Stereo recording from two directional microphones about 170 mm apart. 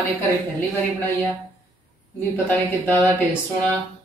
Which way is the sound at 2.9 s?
10° left (ahead or behind).